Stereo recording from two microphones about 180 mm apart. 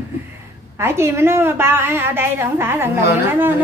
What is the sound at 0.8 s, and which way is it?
A woman's voice, 15° right (ahead or behind).